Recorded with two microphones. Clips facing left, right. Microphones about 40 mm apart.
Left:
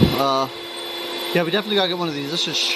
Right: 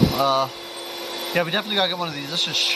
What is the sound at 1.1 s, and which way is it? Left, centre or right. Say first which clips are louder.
Speech: left 2 dB; centre.